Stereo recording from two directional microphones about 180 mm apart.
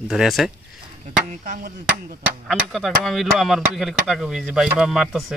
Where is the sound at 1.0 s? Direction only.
45° right (ahead or behind).